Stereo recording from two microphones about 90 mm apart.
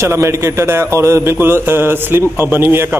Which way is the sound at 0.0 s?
30° right (ahead or behind).